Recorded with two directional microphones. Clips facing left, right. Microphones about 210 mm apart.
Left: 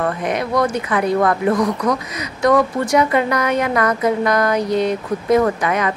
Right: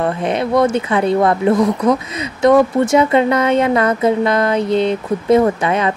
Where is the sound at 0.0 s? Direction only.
25° right (ahead or behind).